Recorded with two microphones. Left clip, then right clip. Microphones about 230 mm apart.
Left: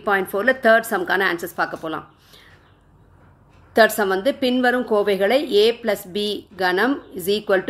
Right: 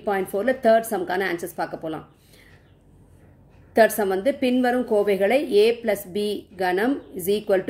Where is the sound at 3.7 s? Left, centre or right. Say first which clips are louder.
Left 2 dB; centre.